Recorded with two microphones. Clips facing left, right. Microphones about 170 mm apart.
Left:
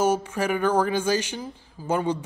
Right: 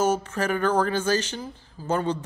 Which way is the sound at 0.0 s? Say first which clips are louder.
Left 1 dB; 10° left (ahead or behind).